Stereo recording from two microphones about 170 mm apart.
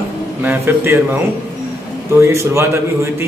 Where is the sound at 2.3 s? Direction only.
15° right (ahead or behind).